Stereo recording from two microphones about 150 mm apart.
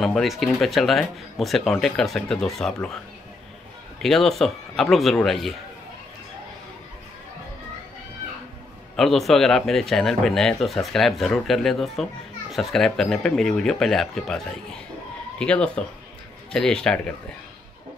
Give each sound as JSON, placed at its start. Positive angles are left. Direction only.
{"t": 0.0, "sound": "speech", "side_deg": 0}
{"t": 4.0, "sound": "speech", "side_deg": 0}
{"t": 8.9, "sound": "speech", "side_deg": 0}